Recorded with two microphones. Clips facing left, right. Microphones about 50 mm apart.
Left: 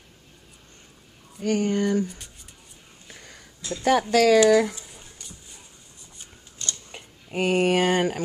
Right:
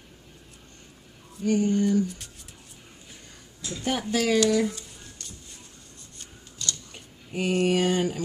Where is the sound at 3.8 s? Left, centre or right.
Left.